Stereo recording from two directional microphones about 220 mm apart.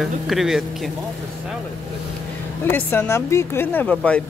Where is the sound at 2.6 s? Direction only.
10° left (ahead or behind).